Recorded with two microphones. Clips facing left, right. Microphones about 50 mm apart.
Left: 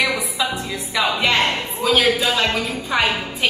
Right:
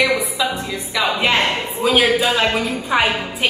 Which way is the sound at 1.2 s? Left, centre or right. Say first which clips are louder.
Right 1 dB; centre.